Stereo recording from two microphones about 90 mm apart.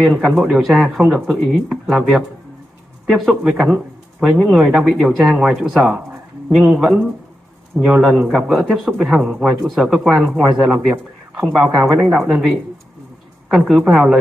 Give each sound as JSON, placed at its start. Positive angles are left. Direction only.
{"t": 0.0, "sound": "a woman's voice", "side_deg": -5}